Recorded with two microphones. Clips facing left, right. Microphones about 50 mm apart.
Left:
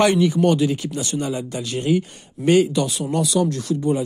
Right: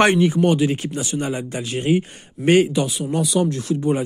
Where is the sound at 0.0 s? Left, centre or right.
Right.